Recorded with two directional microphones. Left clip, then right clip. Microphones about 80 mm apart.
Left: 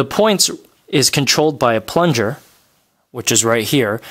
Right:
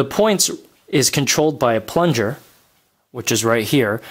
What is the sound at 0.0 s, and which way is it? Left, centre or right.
Speech, left.